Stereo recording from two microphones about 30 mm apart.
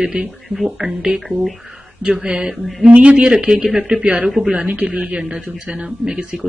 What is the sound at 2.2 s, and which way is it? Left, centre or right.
Speech, right.